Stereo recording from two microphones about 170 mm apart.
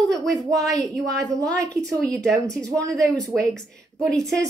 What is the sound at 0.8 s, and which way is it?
A woman's voice, 5° left (ahead or behind).